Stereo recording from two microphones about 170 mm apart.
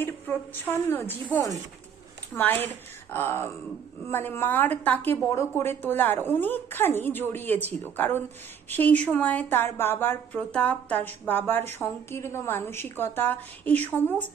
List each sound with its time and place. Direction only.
0.0 s a woman's voice: 10° left (ahead or behind)